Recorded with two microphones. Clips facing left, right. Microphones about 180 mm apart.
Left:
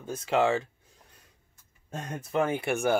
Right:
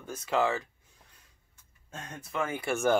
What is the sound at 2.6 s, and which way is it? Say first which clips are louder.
Speech: left 1 dB; 15° left (ahead or behind).